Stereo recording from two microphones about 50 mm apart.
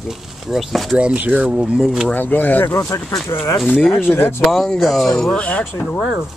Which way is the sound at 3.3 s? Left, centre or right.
Left.